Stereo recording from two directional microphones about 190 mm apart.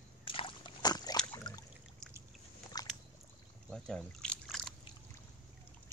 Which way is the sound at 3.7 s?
5° left (ahead or behind).